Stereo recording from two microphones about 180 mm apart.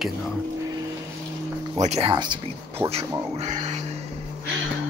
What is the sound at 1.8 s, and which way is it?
Speech, 35° right (ahead or behind).